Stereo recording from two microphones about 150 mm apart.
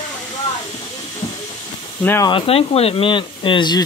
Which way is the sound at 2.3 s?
40° left (ahead or behind).